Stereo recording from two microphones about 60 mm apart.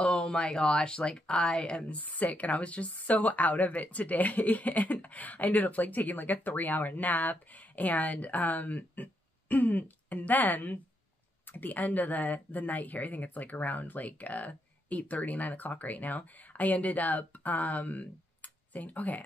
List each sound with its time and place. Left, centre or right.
0.0 s speech: centre